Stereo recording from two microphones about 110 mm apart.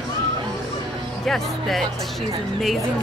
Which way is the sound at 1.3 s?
Centre (ahead or behind).